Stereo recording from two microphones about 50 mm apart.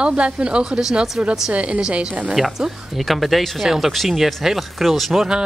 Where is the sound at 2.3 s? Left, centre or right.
Centre.